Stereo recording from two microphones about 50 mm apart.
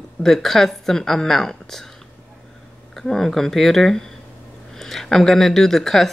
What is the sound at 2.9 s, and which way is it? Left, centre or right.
Speech, centre.